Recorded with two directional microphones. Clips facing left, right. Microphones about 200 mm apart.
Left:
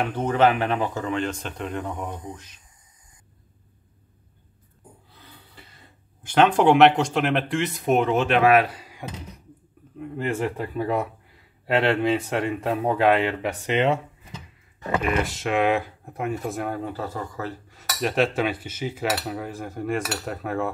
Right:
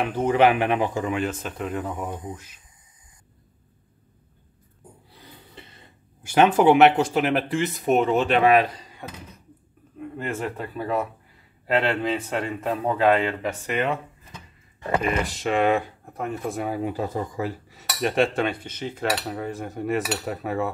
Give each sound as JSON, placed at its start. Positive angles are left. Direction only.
{"t": 0.0, "sound": "speech", "side_deg": -10}
{"t": 5.1, "sound": "a sound", "side_deg": -15}
{"t": 6.2, "sound": "cutlery", "side_deg": -10}
{"t": 10.1, "sound": "speech", "side_deg": 15}
{"t": 15.0, "sound": "cutlery", "side_deg": 0}
{"t": 16.8, "sound": "cutlery", "side_deg": -15}